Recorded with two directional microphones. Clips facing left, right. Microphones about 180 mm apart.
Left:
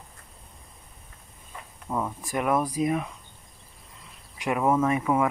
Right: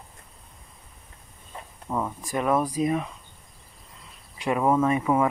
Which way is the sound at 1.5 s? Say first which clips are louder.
Right 3 dB; 30° right (ahead or behind).